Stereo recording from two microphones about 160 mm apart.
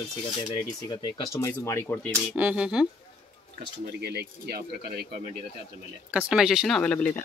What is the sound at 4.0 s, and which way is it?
Speech, 90° right.